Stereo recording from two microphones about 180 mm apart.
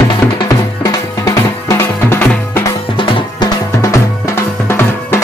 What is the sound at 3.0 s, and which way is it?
Music, 25° left (ahead or behind).